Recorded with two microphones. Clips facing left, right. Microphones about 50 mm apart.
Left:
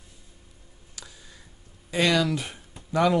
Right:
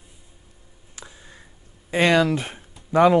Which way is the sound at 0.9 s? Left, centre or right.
Right.